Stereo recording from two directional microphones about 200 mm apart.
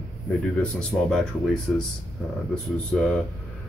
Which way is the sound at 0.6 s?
5° left (ahead or behind).